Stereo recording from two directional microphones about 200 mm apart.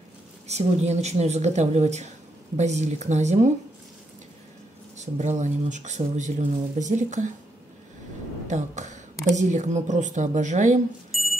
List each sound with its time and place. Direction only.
0.5 s speech: 35° right (ahead or behind)
4.9 s speech: 35° right (ahead or behind)
8.5 s speech: 35° right (ahead or behind)
11.1 s a sound: centre (ahead or behind)